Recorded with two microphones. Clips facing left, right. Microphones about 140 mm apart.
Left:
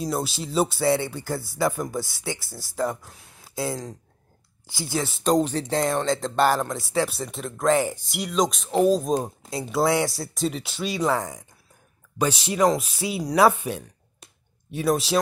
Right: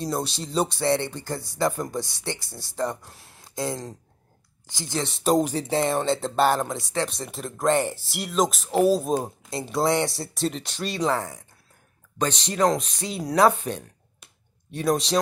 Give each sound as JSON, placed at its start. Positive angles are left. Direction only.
{"t": 0.0, "sound": "speech", "side_deg": 5}
{"t": 11.1, "sound": "speech", "side_deg": 15}